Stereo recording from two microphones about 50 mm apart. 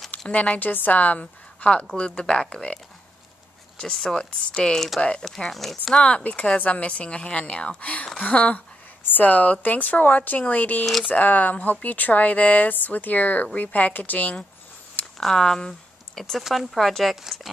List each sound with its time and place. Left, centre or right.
0.3 s a woman's voice: left
3.8 s speech: centre
4.7 s speech: centre
6.5 s a woman's voice: left
15.1 s speech: centre